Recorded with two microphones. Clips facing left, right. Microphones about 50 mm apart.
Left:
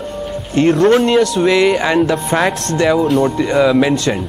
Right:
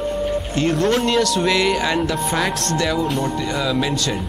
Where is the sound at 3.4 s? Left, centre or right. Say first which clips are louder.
Left 9 dB; left.